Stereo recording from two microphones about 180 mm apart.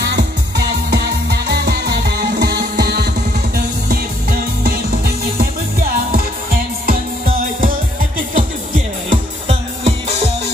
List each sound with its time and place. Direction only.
0.0 s music: 70° right (ahead or behind); by 7.7 s 50° right (ahead or behind)
8.4 s music: 40° right (ahead or behind)